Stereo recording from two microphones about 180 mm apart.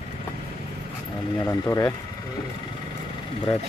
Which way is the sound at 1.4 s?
15° left (ahead or behind).